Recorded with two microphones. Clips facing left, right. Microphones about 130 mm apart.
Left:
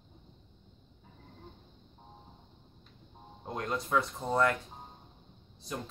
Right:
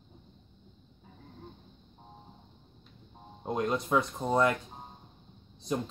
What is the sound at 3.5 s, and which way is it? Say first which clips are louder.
Speech: right 3 dB; 20° right (ahead or behind).